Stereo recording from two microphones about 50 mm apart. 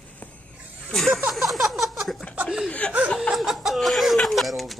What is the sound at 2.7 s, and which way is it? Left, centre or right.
Speech, left.